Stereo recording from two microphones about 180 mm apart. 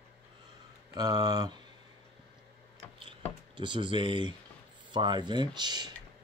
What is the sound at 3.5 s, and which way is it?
Speech, 25° right (ahead or behind).